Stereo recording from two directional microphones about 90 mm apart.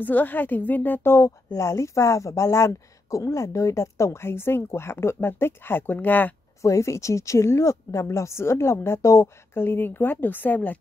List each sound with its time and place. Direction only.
0.0 s a woman's voice: 20° left (ahead or behind)
6.6 s a woman's voice: 35° left (ahead or behind); by 10.8 s 20° left (ahead or behind)